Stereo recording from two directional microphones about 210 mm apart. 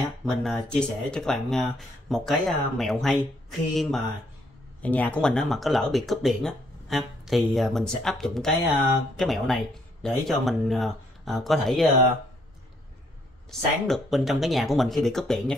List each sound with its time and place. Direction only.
0.2 s speech: centre (ahead or behind)
13.5 s speech: centre (ahead or behind)